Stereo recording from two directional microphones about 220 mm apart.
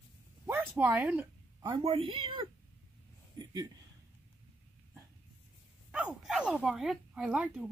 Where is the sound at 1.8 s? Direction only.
25° right (ahead or behind).